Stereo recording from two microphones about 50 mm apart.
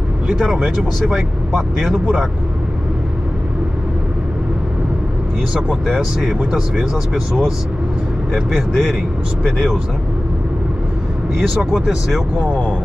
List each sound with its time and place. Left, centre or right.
1.8 s speech: centre
5.5 s speech: centre
8.5 s speech: centre
11.5 s speech: centre